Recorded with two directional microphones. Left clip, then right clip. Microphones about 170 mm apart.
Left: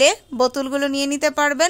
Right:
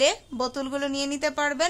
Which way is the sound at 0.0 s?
35° left (ahead or behind).